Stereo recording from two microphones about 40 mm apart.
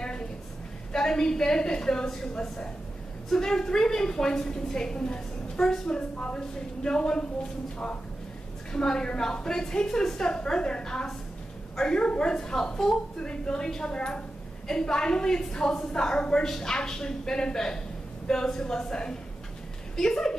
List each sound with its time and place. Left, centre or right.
0.0 s a sound: left
0.9 s a woman's voice: centre
8.7 s a woman's voice: centre